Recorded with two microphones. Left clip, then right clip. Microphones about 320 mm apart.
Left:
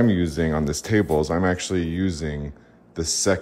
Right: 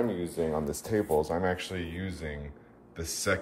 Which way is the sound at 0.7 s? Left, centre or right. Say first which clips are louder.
Left 7 dB; left.